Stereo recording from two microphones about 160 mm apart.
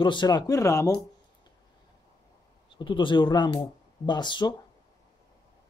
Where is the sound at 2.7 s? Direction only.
30° left (ahead or behind).